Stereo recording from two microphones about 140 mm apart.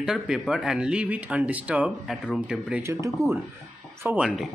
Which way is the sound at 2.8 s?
20° right (ahead or behind).